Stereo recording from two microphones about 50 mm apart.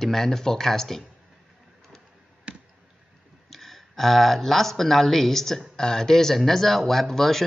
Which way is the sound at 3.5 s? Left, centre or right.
Centre.